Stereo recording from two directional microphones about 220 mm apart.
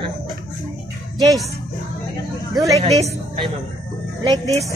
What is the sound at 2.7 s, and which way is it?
Speech, 15° right (ahead or behind).